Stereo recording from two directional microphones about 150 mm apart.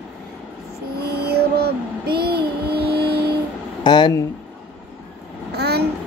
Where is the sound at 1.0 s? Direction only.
90° right.